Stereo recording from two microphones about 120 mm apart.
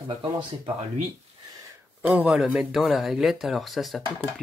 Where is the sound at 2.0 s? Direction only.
10° right (ahead or behind).